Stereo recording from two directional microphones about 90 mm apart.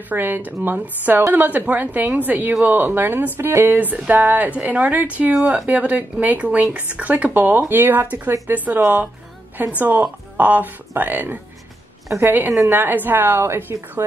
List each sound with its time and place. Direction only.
0.1 s speech: 20° right (ahead or behind)